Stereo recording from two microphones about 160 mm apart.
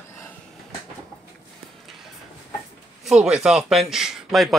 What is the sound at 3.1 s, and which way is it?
Speech, 5° right (ahead or behind).